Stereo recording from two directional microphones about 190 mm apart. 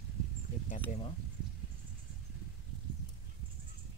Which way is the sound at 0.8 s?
30° left (ahead or behind).